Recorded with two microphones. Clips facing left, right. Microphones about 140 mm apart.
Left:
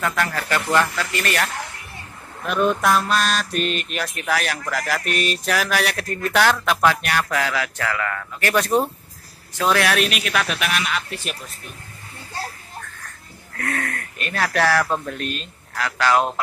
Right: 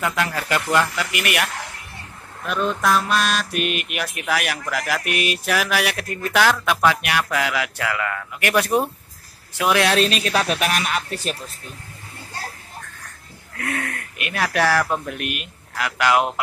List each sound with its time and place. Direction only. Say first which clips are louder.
0.0 s mantra: even; 15° right (ahead or behind)
2.4 s mantra: left 2 dB; 5° left (ahead or behind); by 9.8 s 15° right (ahead or behind)
9.8 s speech: right 2 dB; 30° right (ahead or behind)
13.6 s mantra: even; 15° right (ahead or behind)